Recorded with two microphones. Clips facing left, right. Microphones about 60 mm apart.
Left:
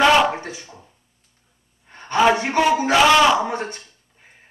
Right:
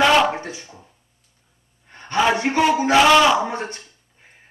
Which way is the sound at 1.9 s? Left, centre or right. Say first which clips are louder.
Left 2 dB; centre.